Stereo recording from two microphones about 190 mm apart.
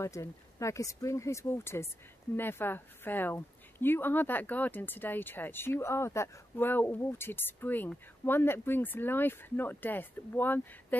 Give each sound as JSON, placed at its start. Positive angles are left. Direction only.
{"t": 0.0, "sound": "a woman's voice", "side_deg": 15}